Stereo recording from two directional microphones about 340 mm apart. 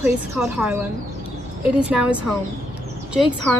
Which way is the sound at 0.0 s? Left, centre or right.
Centre.